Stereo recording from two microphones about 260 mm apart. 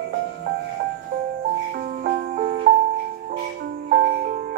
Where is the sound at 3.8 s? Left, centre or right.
Right.